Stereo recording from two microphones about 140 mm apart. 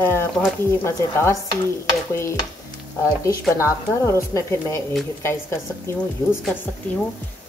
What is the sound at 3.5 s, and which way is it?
A woman's voice, 20° left (ahead or behind).